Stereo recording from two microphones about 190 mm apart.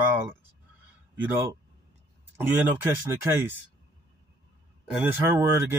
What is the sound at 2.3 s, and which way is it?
Speech, 10° right (ahead or behind).